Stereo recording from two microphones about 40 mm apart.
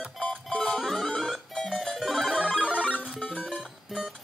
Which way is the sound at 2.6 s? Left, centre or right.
Right.